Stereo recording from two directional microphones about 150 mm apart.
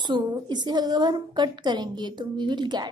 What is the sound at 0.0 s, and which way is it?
A woman's voice, 30° right (ahead or behind).